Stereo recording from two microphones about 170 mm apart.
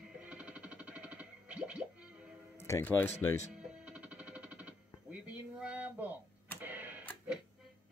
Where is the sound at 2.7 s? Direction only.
15° left (ahead or behind).